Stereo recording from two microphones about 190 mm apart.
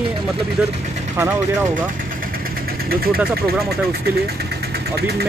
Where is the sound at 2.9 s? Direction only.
55° right (ahead or behind).